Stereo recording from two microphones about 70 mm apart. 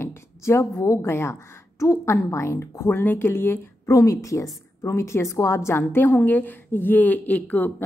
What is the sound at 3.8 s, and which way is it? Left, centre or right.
A woman's voice, left.